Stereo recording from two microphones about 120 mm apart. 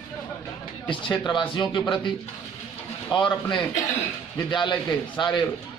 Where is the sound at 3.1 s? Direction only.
40° left (ahead or behind).